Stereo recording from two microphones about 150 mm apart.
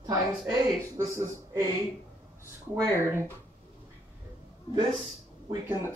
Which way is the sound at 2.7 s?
15° right (ahead or behind).